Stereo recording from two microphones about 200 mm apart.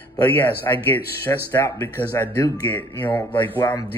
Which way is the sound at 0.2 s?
10° left (ahead or behind).